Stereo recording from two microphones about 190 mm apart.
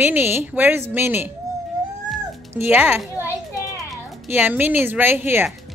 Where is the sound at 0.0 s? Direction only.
10° right (ahead or behind).